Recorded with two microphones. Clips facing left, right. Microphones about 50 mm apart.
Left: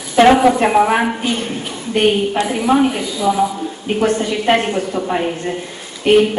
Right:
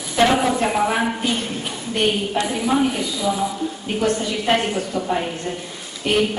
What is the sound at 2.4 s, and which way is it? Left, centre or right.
A woman's voice, left.